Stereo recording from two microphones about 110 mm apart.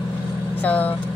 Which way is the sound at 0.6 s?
15° left (ahead or behind).